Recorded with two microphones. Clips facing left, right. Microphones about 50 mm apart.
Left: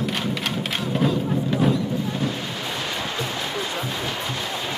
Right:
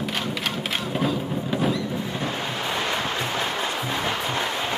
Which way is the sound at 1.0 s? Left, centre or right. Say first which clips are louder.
Left 4 dB; centre.